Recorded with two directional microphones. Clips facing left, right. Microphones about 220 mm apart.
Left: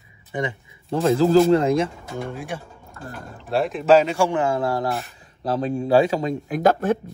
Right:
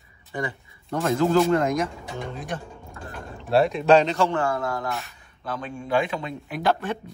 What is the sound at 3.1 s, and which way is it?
Speech, centre (ahead or behind).